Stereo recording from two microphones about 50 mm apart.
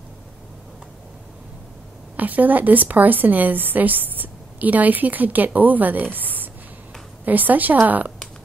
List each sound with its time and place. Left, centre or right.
2.1 s a woman's voice: right
6.1 s a sound: right
7.2 s a woman's voice: right